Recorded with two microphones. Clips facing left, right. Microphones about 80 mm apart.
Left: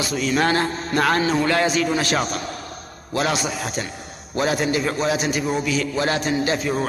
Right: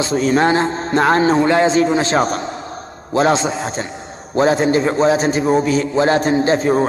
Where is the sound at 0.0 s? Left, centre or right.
Right.